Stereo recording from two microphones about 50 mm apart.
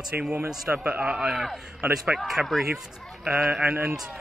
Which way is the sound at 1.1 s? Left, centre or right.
Centre.